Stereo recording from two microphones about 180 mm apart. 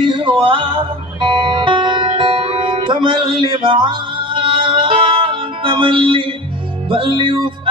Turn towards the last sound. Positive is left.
turn(degrees=-30)  # may be behind; listen again after turning